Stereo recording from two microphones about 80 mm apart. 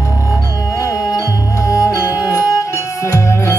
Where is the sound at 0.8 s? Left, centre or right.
Left.